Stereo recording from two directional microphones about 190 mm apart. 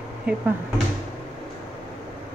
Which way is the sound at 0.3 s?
5° right (ahead or behind).